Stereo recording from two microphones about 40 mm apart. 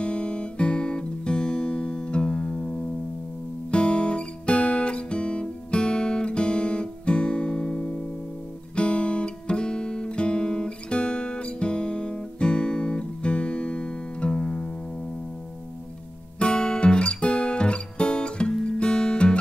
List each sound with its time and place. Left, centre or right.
0.0 s guitar: left
16.3 s music: left
18.5 s guitar: centre
18.8 s music: left